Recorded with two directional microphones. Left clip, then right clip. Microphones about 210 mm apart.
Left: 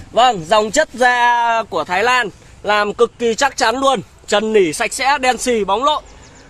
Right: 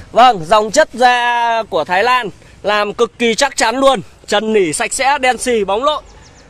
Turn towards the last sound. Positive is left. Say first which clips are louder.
# right 1 dB
turn(degrees=0)  # may be behind; listen again after turning